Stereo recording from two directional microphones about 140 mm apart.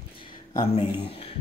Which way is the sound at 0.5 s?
35° left (ahead or behind).